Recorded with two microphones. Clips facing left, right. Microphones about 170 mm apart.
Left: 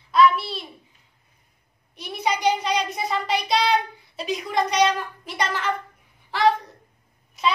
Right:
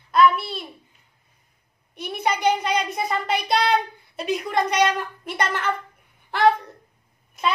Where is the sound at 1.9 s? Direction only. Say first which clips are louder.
Right 1 dB; 55° right (ahead or behind).